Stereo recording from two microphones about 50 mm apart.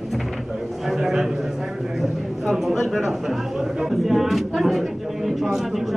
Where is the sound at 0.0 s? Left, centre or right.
Centre.